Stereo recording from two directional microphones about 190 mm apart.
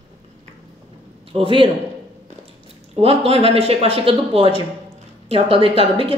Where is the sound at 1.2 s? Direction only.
30° right (ahead or behind).